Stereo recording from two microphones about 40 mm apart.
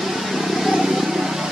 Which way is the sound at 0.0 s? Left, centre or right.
Centre.